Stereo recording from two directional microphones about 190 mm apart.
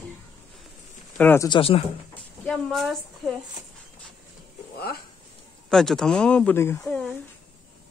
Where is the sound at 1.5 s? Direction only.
30° left (ahead or behind).